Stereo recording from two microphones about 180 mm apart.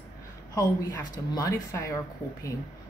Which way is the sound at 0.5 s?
20° left (ahead or behind).